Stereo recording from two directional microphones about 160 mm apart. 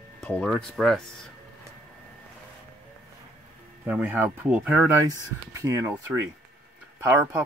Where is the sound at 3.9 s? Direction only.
10° right (ahead or behind).